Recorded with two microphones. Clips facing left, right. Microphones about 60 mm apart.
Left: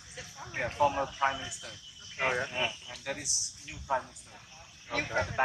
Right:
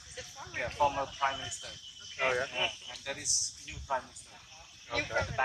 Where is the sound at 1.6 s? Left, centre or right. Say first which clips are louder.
Left 1 dB; left.